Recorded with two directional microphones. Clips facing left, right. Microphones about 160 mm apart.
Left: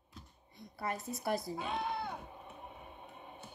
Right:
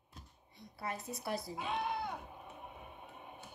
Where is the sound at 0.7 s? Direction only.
50° left (ahead or behind).